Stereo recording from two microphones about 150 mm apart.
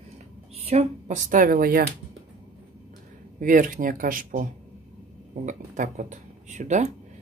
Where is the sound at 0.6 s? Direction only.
45° right (ahead or behind); by 1.8 s 75° right (ahead or behind).